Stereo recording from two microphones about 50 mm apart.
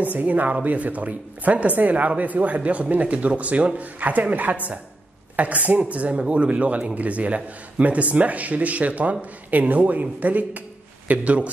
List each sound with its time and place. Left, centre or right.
0.0 s a man's voice: right